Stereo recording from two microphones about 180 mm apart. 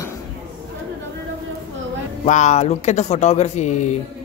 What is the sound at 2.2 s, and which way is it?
Speech, 40° left (ahead or behind).